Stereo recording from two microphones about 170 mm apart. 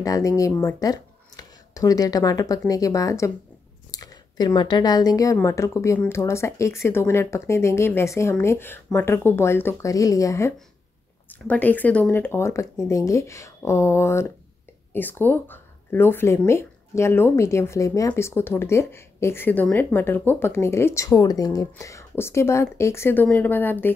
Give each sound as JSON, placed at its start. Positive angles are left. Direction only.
{"t": 0.0, "sound": "a woman's voice", "side_deg": 20}